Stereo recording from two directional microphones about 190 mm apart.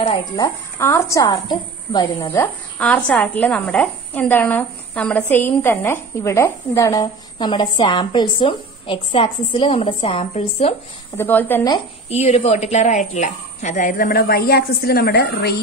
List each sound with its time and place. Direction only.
0.4 s a woman's voice: 15° left (ahead or behind); by 10.7 s 30° left (ahead or behind)
11.1 s a woman's voice: 10° left (ahead or behind)
11.7 s speech: 35° left (ahead or behind); by 15.5 s 60° left (ahead or behind)